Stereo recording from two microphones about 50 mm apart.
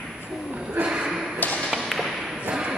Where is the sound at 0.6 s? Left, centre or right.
Right.